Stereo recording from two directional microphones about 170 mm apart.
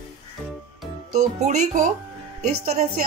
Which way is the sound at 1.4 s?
45° right (ahead or behind).